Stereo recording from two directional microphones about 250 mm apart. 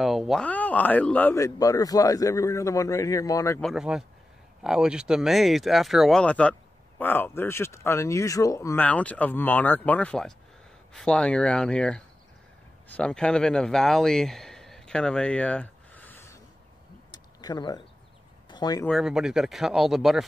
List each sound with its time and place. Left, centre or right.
0.0 s speech: centre
3.7 s speech: centre
17.1 s a sound: centre
18.5 s speech: centre
18.9 s speech: centre